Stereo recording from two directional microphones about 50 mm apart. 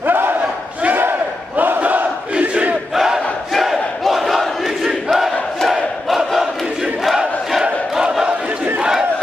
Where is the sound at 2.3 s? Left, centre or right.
Right.